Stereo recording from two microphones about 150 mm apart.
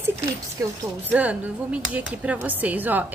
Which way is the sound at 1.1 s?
10° right (ahead or behind).